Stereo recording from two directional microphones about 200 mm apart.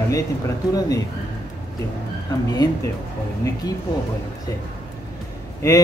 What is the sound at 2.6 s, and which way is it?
Speech, 20° left (ahead or behind).